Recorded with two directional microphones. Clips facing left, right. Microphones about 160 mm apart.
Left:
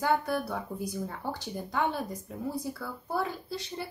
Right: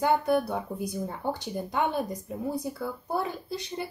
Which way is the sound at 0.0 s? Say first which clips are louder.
Right 4 dB; 20° right (ahead or behind).